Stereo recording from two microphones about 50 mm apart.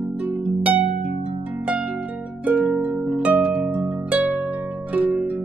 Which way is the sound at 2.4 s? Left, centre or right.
Right.